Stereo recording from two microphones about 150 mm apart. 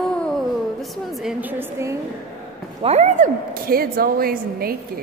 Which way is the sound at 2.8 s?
50° right (ahead or behind).